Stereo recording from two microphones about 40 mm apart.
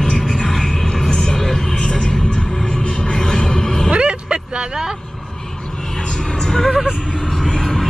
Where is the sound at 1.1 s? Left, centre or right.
Centre.